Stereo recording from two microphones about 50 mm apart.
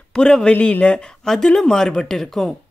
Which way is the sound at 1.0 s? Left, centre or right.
Centre.